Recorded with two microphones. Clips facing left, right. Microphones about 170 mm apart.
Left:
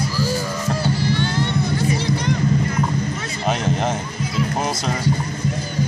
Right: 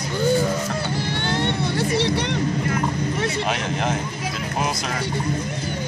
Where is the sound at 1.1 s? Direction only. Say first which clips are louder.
Left 2 dB; 60° right (ahead or behind).